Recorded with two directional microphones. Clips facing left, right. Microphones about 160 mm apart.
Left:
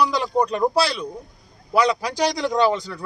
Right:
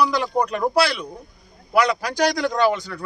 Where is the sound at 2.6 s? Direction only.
30° left (ahead or behind).